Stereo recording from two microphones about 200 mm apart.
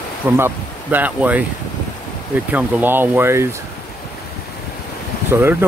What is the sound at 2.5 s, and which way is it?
Speech, 10° right (ahead or behind).